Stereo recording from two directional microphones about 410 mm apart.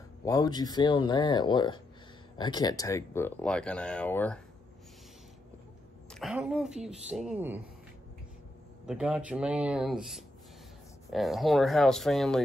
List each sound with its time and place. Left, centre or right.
0.2 s speech: centre
6.1 s speech: centre
8.8 s speech: centre